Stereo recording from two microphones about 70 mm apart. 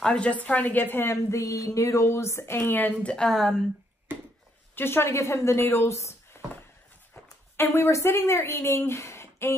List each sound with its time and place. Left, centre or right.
0.0 s a woman's voice: centre; by 2.9 s left
3.0 s a woman's voice: centre
4.7 s a woman's voice: left
7.5 s a woman's voice: left